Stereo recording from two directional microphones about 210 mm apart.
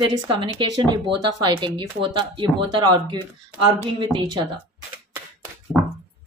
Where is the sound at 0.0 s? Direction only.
25° right (ahead or behind).